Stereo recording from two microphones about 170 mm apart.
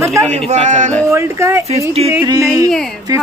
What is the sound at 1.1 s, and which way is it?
Speech, 15° right (ahead or behind).